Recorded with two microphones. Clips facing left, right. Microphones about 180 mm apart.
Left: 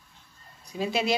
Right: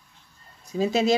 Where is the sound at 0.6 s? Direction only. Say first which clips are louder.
Right 5 dB; 40° right (ahead or behind).